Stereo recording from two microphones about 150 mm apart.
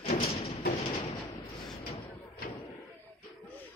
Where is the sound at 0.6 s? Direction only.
60° left (ahead or behind).